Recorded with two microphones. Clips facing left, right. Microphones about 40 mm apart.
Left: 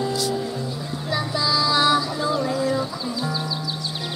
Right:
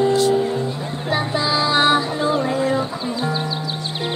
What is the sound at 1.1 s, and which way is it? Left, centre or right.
Child singing, right.